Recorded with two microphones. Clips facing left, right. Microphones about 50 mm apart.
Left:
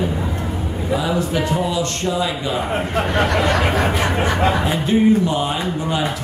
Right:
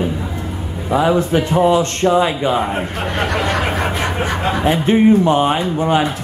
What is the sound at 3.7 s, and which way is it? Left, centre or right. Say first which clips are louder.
Speech: left 1 dB; right.